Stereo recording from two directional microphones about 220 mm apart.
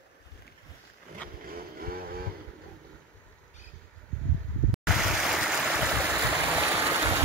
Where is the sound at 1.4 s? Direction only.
40° right (ahead or behind).